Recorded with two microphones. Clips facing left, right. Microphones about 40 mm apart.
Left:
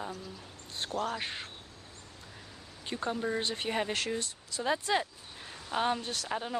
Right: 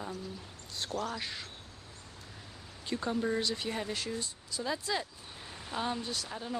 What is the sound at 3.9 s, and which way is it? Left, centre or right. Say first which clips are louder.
Speech: left 3 dB; left.